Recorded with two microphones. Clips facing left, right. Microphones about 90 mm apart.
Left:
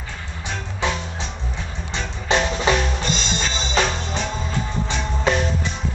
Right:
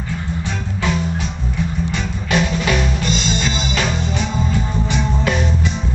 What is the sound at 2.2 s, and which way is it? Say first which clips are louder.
Music: even; 25° left (ahead or behind).